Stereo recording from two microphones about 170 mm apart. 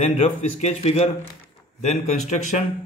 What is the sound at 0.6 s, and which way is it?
Speech, 35° left (ahead or behind).